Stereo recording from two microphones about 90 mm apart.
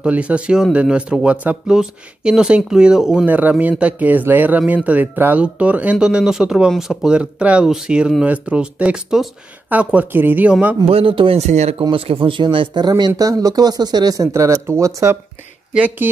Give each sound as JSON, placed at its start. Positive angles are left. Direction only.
{"t": 0.0, "sound": "speech", "side_deg": -15}
{"t": 3.3, "sound": "speech", "side_deg": -20}
{"t": 10.9, "sound": "speech", "side_deg": -85}
{"t": 15.7, "sound": "speech", "side_deg": -15}